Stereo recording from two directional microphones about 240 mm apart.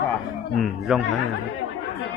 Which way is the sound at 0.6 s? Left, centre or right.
Centre.